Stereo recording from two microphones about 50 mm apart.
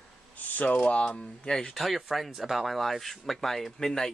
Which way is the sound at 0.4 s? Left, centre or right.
Left.